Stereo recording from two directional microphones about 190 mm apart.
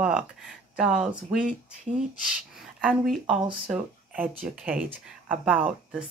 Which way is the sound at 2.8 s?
Centre (ahead or behind).